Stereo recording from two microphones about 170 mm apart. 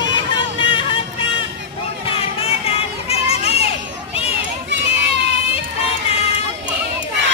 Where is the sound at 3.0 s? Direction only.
35° left (ahead or behind).